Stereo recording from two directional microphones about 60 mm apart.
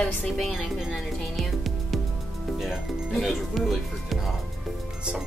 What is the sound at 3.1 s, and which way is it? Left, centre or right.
Speech, centre.